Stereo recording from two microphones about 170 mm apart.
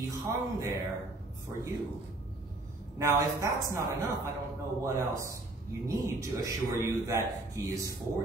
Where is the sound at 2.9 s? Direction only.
15° right (ahead or behind).